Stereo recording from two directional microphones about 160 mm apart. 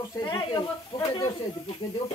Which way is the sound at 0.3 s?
25° left (ahead or behind).